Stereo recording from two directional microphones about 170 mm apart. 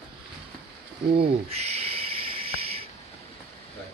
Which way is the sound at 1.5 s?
35° right (ahead or behind).